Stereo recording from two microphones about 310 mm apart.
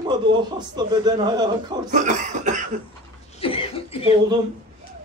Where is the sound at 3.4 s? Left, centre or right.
Centre.